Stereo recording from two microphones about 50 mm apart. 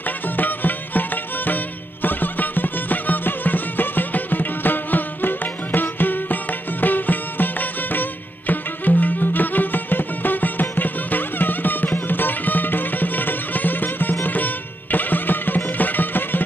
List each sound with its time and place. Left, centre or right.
0.4 s music: left